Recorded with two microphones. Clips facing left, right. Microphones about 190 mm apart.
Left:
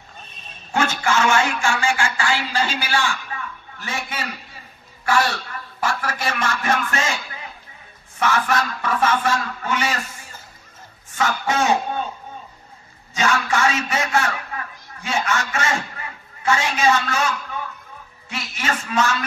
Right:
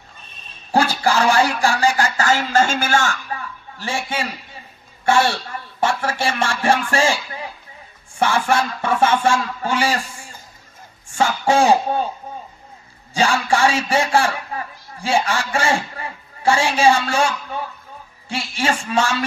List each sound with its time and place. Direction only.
0.7 s a sound: 35° right (ahead or behind)
5.0 s a man's voice: 25° right (ahead or behind)
13.1 s a man's voice: 30° right (ahead or behind)
18.3 s speech: 30° right (ahead or behind)